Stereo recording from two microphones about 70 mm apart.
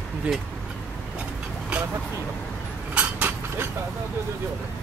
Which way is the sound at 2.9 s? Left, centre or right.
Right.